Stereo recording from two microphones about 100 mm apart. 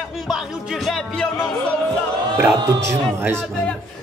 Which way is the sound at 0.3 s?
Centre (ahead or behind).